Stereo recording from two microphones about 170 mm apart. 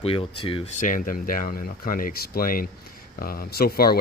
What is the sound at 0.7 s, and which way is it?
Speech, 50° left (ahead or behind).